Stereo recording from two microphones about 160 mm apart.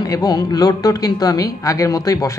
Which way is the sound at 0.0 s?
25° left (ahead or behind).